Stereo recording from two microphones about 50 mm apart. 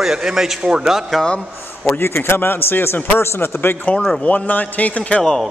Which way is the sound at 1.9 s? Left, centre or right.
Left.